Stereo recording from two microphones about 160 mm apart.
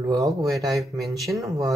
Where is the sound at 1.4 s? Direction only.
20° right (ahead or behind).